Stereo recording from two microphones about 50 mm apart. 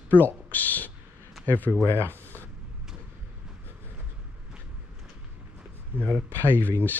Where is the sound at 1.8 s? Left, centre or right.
Right.